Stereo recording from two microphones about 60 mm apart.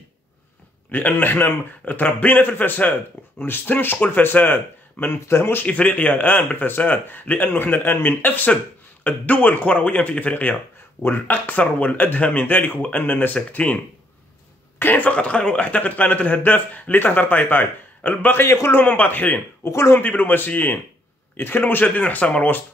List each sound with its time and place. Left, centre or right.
0.9 s a man's voice: left
5.7 s a man's voice: left
14.8 s a man's voice: left
18.5 s speech: left
18.8 s a man's voice: left
19.6 s speech: left
20.0 s a man's voice: left